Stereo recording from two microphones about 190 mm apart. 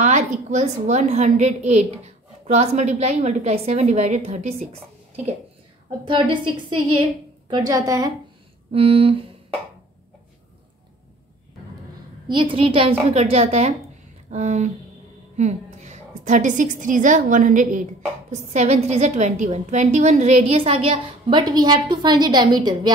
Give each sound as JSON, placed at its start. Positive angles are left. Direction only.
{"t": 0.0, "sound": "a woman's voice", "side_deg": -40}
{"t": 6.0, "sound": "a woman's voice", "side_deg": -25}
{"t": 8.7, "sound": "a woman's voice", "side_deg": -30}
{"t": 12.3, "sound": "a woman's voice", "side_deg": -25}